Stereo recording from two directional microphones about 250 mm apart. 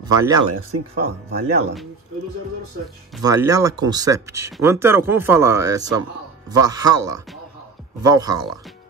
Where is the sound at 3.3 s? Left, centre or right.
Centre.